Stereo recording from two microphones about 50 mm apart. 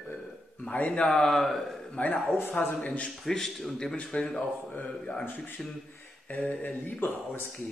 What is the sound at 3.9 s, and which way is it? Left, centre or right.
Speech, left.